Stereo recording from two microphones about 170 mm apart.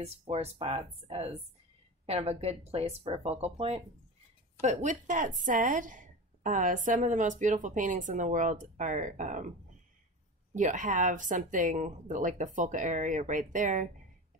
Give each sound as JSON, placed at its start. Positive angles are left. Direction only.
{"t": 0.0, "sound": "a woman's voice", "side_deg": -40}
{"t": 10.5, "sound": "a woman's voice", "side_deg": -45}